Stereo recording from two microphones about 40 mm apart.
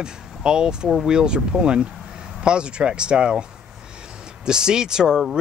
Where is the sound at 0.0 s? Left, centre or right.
Centre.